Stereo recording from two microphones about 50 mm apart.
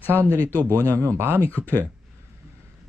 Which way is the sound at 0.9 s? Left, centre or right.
Right.